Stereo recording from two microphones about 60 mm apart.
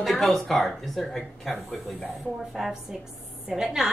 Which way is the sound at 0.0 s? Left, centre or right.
Centre.